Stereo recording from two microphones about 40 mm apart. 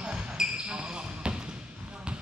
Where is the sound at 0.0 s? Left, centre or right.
Centre.